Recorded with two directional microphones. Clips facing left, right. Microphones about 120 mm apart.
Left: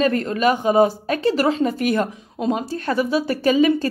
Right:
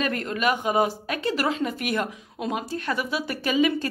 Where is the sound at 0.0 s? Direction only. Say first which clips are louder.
Left 7 dB; 35° left (ahead or behind).